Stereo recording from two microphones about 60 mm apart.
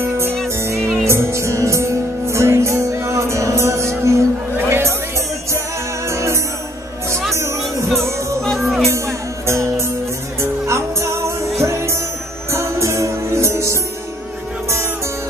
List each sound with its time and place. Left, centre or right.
0.0 s music: right
4.6 s music: right
6.0 s music: right
8.4 s music: centre
8.9 s music: right